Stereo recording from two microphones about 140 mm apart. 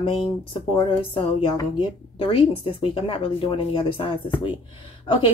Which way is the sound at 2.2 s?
40° left (ahead or behind).